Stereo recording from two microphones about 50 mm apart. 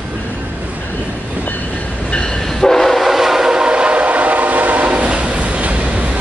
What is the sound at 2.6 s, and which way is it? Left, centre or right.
Train, centre.